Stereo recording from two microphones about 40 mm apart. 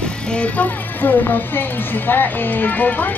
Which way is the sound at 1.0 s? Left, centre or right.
Left.